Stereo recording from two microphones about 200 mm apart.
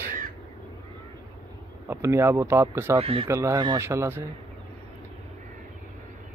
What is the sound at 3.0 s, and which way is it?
Speech, 30° right (ahead or behind).